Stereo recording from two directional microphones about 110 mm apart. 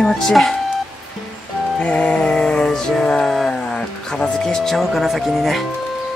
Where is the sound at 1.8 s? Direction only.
10° left (ahead or behind).